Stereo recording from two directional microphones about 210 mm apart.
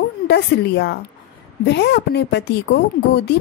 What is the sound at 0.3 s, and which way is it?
A woman's voice, 55° left (ahead or behind).